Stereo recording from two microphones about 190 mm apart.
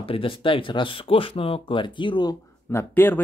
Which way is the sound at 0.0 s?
30° left (ahead or behind).